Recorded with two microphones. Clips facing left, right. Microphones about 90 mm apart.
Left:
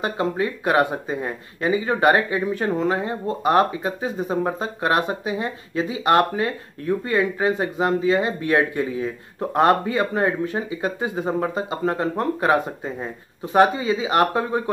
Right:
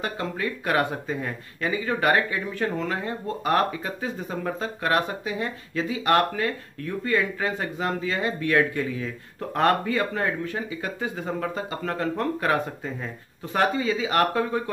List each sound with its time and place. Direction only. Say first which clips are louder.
0.0 s speech: left 6 dB; 20° left (ahead or behind)